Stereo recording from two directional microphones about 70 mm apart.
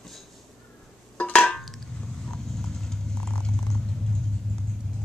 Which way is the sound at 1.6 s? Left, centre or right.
Centre.